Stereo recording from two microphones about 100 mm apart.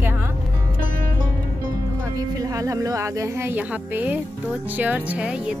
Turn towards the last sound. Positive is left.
turn(degrees=-10)  # may be behind; listen again after turning